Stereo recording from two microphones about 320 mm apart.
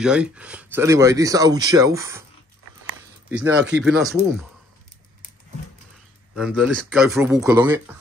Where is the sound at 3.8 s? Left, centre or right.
Centre.